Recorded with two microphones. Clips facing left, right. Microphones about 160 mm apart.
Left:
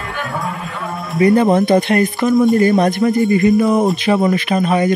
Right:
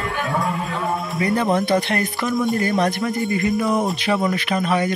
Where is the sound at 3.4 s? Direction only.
25° left (ahead or behind).